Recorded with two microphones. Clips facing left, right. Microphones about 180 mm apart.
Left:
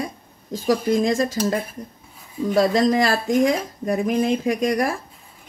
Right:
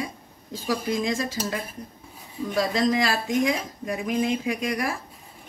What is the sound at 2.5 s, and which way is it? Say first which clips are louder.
Speech: left 5 dB; 45° left (ahead or behind).